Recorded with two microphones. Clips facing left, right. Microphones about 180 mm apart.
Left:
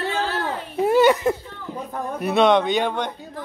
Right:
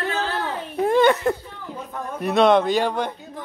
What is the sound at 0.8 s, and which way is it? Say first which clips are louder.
A man's voice: left 1 dB; 5° left (ahead or behind).